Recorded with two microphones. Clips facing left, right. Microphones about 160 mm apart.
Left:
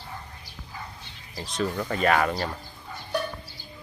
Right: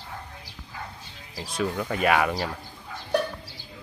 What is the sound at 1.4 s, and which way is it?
Speech, 5° right (ahead or behind).